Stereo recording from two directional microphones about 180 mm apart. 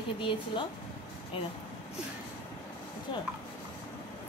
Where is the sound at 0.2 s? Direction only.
30° left (ahead or behind).